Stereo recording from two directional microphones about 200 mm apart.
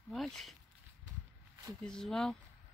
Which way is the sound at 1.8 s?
5° left (ahead or behind).